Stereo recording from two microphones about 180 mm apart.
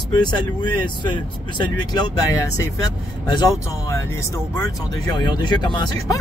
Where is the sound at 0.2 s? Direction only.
25° left (ahead or behind).